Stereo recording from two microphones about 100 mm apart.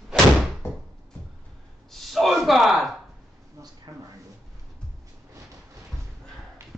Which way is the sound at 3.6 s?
30° right (ahead or behind).